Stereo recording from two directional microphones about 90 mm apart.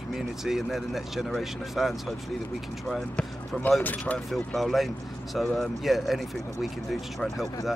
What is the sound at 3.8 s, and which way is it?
Speech, 15° left (ahead or behind).